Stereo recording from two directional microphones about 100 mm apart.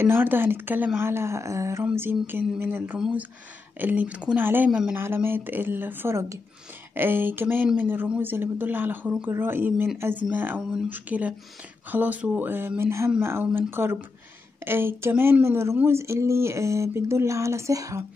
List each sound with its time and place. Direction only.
0.0 s speech: 20° right (ahead or behind)
4.6 s speech: 10° right (ahead or behind)
4.9 s speech: 20° right (ahead or behind)